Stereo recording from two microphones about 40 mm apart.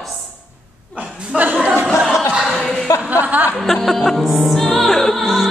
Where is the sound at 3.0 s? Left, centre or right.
Right.